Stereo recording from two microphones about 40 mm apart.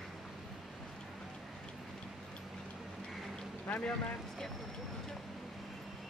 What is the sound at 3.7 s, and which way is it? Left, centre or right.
Vehicle, left.